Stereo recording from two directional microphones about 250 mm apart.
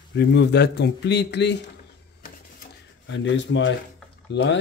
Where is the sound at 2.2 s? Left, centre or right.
Left.